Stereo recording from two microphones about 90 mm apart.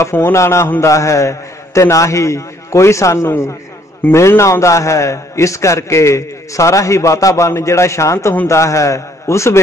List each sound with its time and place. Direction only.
0.0 s a man's voice: 30° left (ahead or behind)